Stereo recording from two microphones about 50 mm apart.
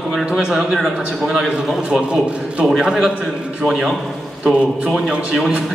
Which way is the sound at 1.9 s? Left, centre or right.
Centre.